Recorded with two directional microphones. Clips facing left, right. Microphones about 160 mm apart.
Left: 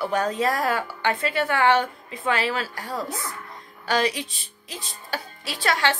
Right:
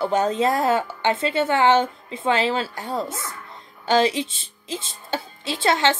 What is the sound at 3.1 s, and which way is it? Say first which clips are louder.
Speech: even; centre (ahead or behind).